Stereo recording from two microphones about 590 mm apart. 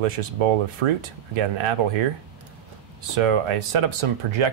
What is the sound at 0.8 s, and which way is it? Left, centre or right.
Speech, right.